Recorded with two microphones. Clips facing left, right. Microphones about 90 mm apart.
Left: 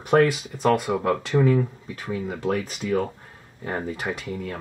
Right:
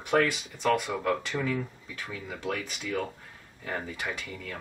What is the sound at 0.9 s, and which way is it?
Speech, 25° left (ahead or behind).